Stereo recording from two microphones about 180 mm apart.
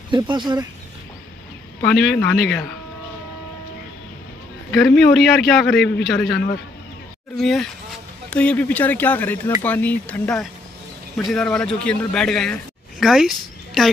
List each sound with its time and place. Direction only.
0.1 s speech: 25° right (ahead or behind)
1.8 s a man's voice: centre (ahead or behind)
5.0 s a man's voice: centre (ahead or behind)
6.3 s speech: 55° left (ahead or behind)
7.3 s a man's voice: centre (ahead or behind)